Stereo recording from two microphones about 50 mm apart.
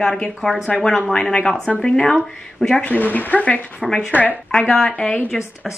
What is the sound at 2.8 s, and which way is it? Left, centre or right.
Speech, left.